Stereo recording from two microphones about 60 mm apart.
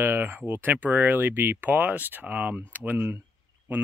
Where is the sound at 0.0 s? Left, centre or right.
Right.